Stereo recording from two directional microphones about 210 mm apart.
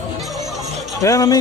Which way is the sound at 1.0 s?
15° left (ahead or behind).